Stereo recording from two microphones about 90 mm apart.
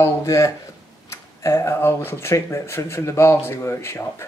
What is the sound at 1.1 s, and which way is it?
Speech, 35° left (ahead or behind).